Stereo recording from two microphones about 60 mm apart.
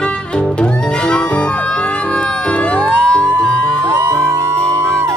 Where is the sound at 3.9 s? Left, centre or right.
Right.